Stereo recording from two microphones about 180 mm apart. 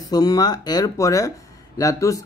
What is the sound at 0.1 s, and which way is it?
Speech, 20° left (ahead or behind).